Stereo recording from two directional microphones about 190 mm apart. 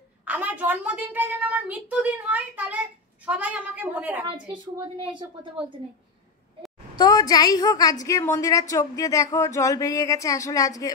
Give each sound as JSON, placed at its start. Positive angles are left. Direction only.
{"t": 0.2, "sound": "a woman's voice", "side_deg": -10}
{"t": 7.0, "sound": "a woman's voice", "side_deg": 20}